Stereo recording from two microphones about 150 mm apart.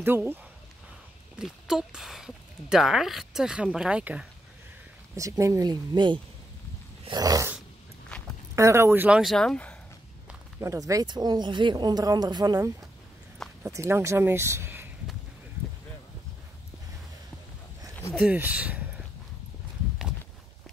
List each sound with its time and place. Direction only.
0.0 s speech: 15° right (ahead or behind)
1.4 s speech: 5° right (ahead or behind)
5.1 s speech: 20° right (ahead or behind)
7.1 s dog: 25° right (ahead or behind)
8.1 s walk: 5° left (ahead or behind)
8.5 s speech: 20° right (ahead or behind)
9.2 s speech: centre (ahead or behind)
10.6 s speech: 20° right (ahead or behind)
13.7 s speech: 20° right (ahead or behind)
18.1 s a sound: 10° right (ahead or behind)